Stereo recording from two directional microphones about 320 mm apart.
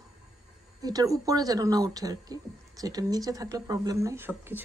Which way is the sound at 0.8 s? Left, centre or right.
Centre.